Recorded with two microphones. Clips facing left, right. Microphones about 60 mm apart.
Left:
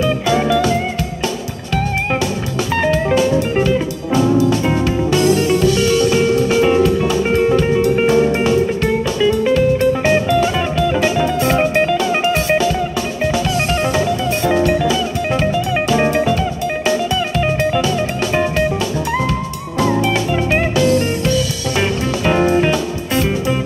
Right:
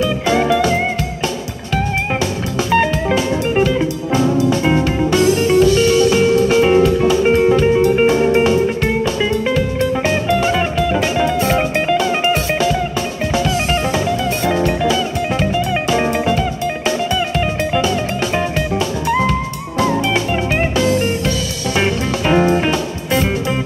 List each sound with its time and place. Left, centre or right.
0.3 s music: right
4.7 s music: right
10.5 s music: centre
17.6 s music: right
21.7 s music: right